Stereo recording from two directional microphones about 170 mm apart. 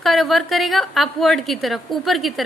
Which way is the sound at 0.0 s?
Centre (ahead or behind).